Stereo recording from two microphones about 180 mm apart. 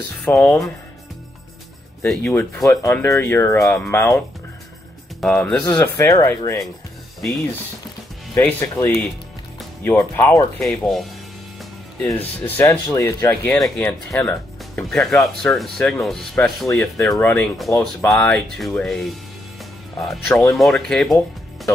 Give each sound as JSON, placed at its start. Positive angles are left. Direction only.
{"t": 0.2, "sound": "speech", "side_deg": 10}
{"t": 2.0, "sound": "speech", "side_deg": 5}
{"t": 5.2, "sound": "speech", "side_deg": 5}
{"t": 5.7, "sound": "speech", "side_deg": 15}
{"t": 8.4, "sound": "speech", "side_deg": 15}
{"t": 12.0, "sound": "speech", "side_deg": 10}